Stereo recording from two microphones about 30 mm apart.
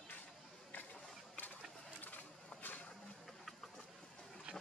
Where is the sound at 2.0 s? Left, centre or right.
Left.